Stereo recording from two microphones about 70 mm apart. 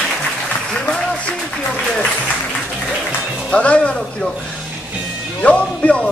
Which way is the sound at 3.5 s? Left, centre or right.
Centre.